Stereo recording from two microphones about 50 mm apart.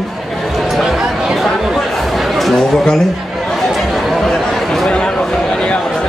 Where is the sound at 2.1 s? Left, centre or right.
Centre.